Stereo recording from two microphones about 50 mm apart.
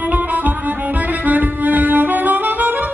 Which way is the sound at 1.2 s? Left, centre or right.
Right.